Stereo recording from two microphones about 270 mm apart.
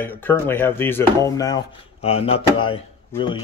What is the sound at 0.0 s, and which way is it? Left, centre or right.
Speech, centre.